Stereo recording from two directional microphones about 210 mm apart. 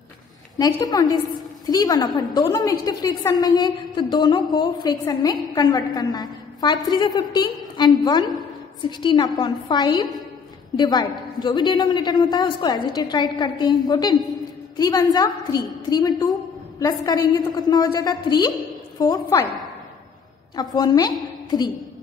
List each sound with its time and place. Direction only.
0.6 s a woman's voice: 20° left (ahead or behind)
20.5 s a woman's voice: 20° left (ahead or behind)